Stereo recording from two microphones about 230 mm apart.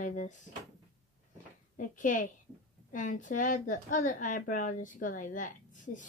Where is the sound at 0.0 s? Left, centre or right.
Left.